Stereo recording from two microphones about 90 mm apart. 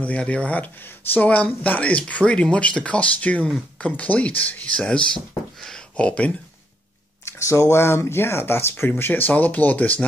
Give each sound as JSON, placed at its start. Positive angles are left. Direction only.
{"t": 0.0, "sound": "speech", "side_deg": 15}
{"t": 7.2, "sound": "speech", "side_deg": 35}